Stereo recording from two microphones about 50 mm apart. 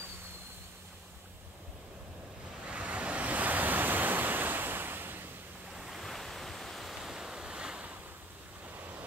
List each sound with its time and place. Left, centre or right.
2.7 s waves: right
5.8 s waves: centre
8.7 s vehicle: right